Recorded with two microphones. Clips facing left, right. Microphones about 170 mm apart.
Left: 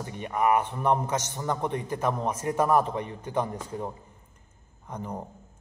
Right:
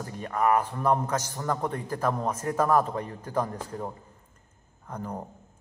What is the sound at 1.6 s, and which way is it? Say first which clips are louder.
Speech: left 1 dB; 5° left (ahead or behind).